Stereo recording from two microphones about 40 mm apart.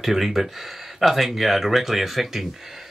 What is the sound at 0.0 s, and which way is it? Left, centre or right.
Speech, centre.